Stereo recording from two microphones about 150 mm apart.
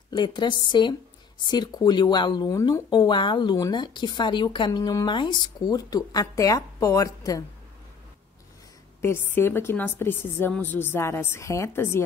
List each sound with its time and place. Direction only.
0.1 s a woman's voice: 30° left (ahead or behind)
9.3 s a woman's voice: 15° left (ahead or behind)